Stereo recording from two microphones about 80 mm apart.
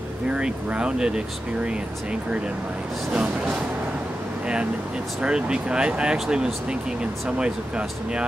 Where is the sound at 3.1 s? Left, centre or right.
Centre.